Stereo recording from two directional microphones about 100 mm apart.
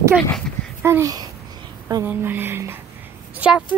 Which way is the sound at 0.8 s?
25° right (ahead or behind).